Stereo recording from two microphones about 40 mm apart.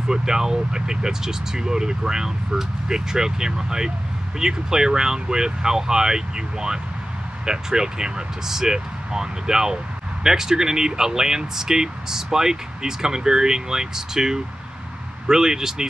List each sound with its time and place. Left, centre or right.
0.1 s speech: centre